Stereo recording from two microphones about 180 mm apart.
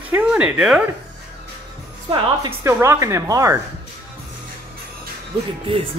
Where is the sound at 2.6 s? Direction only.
15° right (ahead or behind).